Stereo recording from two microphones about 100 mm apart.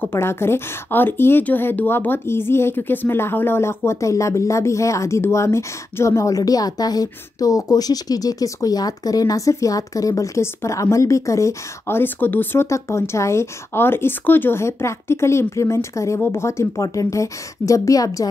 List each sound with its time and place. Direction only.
0.0 s a woman's voice: 25° left (ahead or behind)